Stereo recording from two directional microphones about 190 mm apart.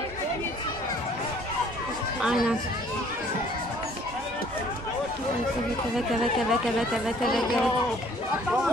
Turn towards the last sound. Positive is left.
turn(degrees=0)  # may be behind; listen again after turning